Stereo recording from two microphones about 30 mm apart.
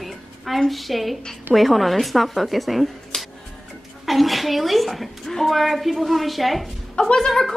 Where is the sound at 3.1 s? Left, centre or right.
Left.